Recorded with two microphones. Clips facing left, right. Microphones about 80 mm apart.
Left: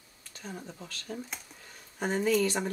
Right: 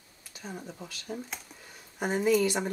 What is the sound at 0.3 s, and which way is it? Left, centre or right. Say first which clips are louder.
Speech: right 1 dB; centre.